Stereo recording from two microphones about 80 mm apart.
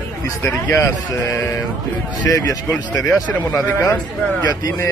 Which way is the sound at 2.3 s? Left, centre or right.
Left.